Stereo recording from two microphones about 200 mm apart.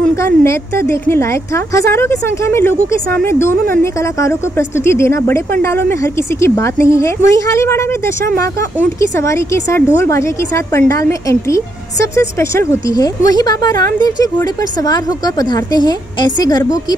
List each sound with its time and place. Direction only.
0.1 s speech: 15° left (ahead or behind)